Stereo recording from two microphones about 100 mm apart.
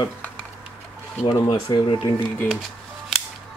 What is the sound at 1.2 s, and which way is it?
Speech, 50° left (ahead or behind).